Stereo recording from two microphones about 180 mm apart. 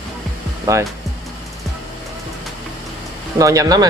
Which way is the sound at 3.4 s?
20° right (ahead or behind).